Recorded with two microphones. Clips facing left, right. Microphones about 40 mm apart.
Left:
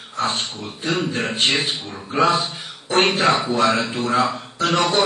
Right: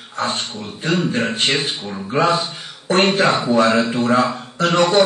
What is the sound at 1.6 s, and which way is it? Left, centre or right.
Speech, left.